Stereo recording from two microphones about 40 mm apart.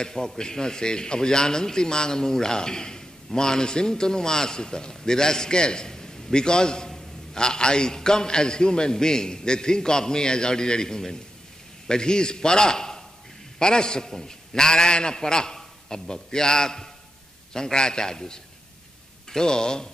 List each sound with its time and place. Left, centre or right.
0.0 s a man's voice: centre